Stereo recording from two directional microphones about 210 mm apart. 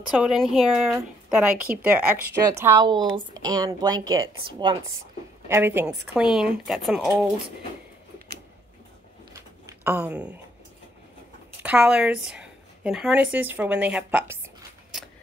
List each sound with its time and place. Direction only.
0.1 s speech: centre (ahead or behind); by 4.9 s 20° right (ahead or behind)
5.5 s speech: 10° right (ahead or behind)
9.3 s a sound: 10° right (ahead or behind)
11.6 s a woman's voice: 5° right (ahead or behind)